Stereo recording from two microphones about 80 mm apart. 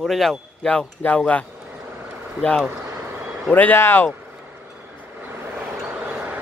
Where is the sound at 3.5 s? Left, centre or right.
Left.